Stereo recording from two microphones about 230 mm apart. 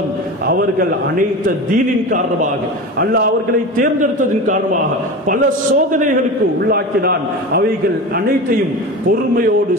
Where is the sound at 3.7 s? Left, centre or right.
Right.